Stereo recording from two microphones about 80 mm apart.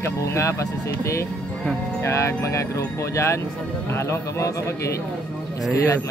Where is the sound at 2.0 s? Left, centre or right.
Left.